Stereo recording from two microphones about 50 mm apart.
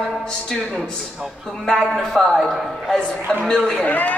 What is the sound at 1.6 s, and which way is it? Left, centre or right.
Speech, centre.